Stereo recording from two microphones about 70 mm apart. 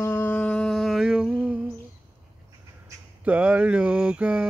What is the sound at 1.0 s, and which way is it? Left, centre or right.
Mantra, centre.